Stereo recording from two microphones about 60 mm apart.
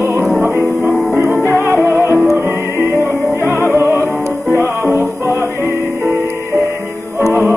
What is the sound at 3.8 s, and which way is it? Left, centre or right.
Music, right.